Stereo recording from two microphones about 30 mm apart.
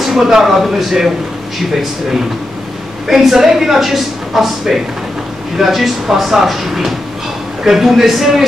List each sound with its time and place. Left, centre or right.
0.0 s a woman's voice: centre
3.1 s a woman's voice: centre